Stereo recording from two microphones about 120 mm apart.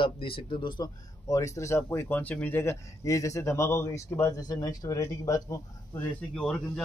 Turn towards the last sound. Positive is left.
turn(degrees=5)  # may be behind; listen again after turning